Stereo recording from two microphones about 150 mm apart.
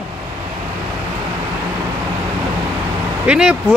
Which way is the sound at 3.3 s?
5° right (ahead or behind).